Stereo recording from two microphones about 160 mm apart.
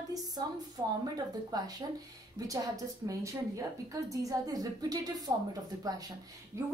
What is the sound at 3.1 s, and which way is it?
A woman's voice, 20° right (ahead or behind).